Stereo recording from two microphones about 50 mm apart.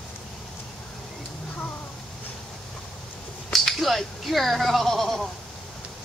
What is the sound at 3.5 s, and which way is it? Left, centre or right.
Bleat, centre.